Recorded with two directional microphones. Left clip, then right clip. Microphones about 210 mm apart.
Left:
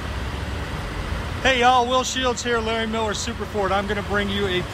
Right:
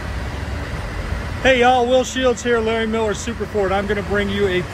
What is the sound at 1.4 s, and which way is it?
Speech, 10° left (ahead or behind).